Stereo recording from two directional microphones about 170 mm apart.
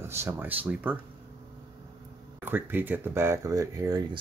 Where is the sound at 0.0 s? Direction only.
15° right (ahead or behind).